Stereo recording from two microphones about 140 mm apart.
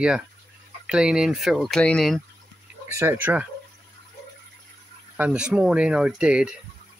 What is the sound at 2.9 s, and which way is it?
Speech, 20° right (ahead or behind).